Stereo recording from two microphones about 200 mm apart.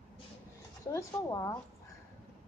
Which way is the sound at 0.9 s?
15° left (ahead or behind).